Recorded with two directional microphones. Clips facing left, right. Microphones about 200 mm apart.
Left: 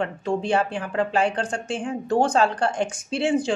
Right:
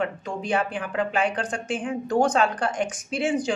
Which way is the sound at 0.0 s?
30° left (ahead or behind).